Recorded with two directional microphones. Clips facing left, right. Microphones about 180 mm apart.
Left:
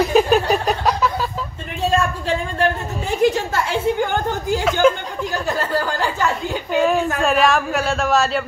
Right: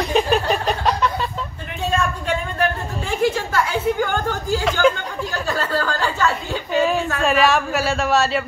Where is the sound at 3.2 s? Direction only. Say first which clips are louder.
Left 2 dB; 25° left (ahead or behind).